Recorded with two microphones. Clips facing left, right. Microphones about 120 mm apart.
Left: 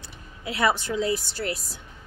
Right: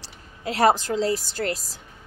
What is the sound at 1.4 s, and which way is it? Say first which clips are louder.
Speech: right 3 dB; 55° right (ahead or behind).